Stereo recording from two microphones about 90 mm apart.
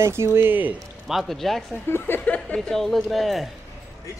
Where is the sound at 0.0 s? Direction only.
30° right (ahead or behind).